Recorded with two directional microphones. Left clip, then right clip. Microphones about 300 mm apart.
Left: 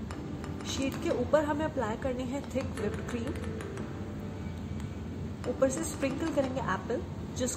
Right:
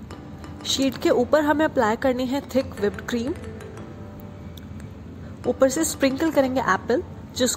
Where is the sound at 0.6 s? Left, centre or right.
Right.